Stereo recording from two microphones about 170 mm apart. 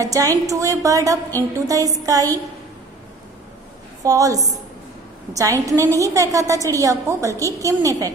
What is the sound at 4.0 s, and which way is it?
A woman's voice, 20° right (ahead or behind).